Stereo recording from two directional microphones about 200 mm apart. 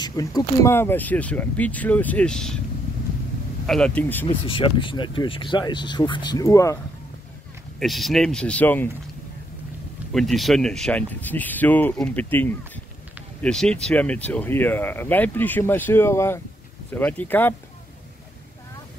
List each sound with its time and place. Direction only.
0.0 s speech: 20° left (ahead or behind); by 2.6 s 5° left (ahead or behind)
3.6 s speech: 5° left (ahead or behind)
4.3 s speech: 25° left (ahead or behind)
7.8 s speech: centre (ahead or behind)
10.1 s speech: centre (ahead or behind)